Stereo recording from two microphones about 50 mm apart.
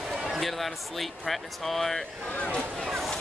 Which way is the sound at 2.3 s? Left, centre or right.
Left.